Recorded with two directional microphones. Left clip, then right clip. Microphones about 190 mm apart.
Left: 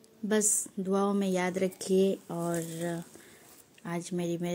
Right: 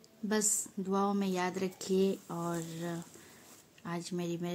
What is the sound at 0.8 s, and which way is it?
Speech, 15° left (ahead or behind).